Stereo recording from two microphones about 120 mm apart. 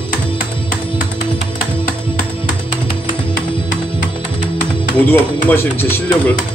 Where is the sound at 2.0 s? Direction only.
45° left (ahead or behind).